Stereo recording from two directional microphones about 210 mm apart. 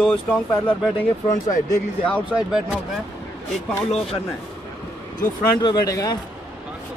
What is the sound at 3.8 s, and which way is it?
Speech, 30° left (ahead or behind).